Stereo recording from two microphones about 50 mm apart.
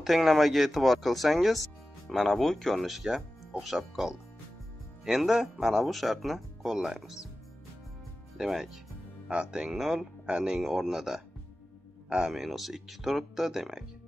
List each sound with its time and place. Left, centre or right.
0.0 s speech: centre
8.4 s speech: centre
9.3 s speech: centre
9.7 s speech: centre